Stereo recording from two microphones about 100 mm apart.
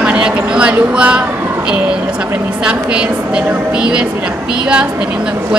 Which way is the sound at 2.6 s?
10° right (ahead or behind).